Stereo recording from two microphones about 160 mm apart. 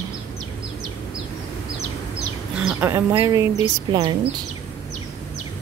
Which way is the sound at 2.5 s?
15° right (ahead or behind).